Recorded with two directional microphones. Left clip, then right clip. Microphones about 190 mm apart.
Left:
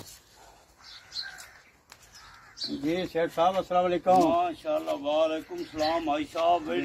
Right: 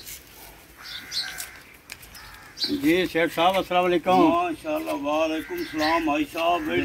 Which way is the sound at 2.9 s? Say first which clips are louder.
Right 6 dB; 65° left (ahead or behind).